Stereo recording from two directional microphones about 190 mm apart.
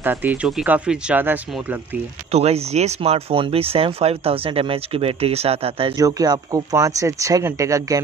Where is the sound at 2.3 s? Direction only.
35° right (ahead or behind).